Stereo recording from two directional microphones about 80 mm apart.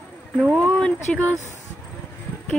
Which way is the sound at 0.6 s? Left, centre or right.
Centre.